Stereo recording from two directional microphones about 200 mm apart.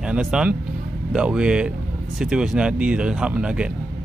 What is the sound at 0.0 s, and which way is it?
Speech, 5° right (ahead or behind).